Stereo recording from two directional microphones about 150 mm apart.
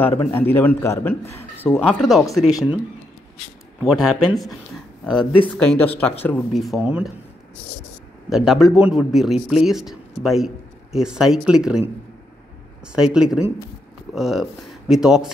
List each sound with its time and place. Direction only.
0.2 s a man's voice: 15° left (ahead or behind)
3.8 s a man's voice: centre (ahead or behind)
6.5 s a man's voice: centre (ahead or behind)
8.3 s a man's voice: centre (ahead or behind)